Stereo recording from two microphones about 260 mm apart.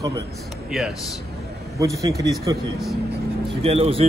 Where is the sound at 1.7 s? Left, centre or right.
Centre.